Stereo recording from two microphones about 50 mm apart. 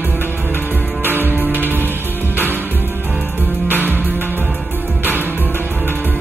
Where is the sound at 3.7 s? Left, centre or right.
Right.